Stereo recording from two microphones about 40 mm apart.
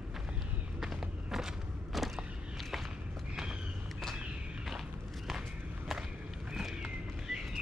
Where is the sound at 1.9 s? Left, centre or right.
Centre.